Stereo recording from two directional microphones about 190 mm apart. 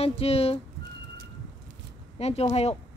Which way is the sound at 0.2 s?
30° left (ahead or behind).